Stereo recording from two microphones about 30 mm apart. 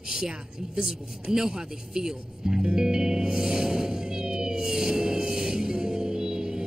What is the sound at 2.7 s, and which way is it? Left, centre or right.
Music, right.